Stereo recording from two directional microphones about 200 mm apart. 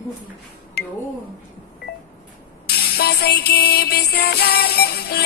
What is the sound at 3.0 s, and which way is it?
Music, 55° left (ahead or behind).